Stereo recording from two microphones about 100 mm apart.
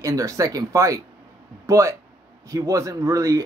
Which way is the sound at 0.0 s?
35° right (ahead or behind).